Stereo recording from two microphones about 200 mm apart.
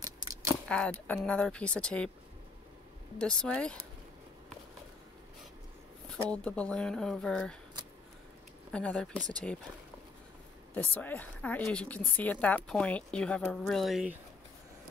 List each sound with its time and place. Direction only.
0.0 s a sound: 15° right (ahead or behind)
0.7 s speech: 5° left (ahead or behind)
3.2 s speech: 5° left (ahead or behind)
6.0 s speech: 5° left (ahead or behind)
8.7 s speech: 5° left (ahead or behind)
10.7 s a woman's voice: 10° left (ahead or behind)